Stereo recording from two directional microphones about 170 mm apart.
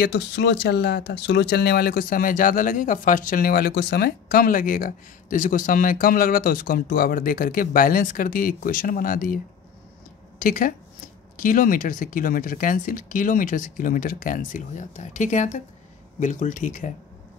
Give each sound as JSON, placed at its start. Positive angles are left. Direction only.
{"t": 0.0, "sound": "speech", "side_deg": 85}
{"t": 10.4, "sound": "speech", "side_deg": 55}